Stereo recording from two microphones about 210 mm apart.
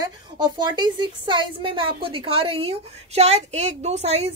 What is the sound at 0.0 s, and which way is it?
A woman's voice, 20° right (ahead or behind).